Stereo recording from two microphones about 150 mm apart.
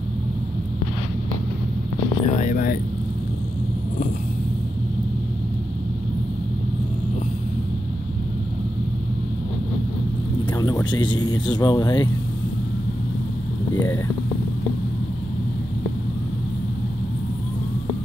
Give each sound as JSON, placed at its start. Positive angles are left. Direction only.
{"t": 2.2, "sound": "speech", "side_deg": 55}
{"t": 10.5, "sound": "speech", "side_deg": 25}